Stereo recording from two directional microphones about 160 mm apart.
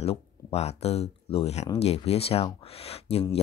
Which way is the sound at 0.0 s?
40° left (ahead or behind).